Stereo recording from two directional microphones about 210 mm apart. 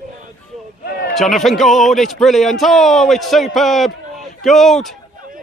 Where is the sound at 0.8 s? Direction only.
50° left (ahead or behind).